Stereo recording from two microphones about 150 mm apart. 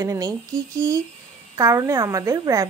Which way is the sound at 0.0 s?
20° right (ahead or behind).